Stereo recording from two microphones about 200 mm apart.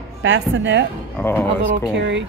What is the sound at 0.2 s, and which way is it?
Speech, 65° right (ahead or behind).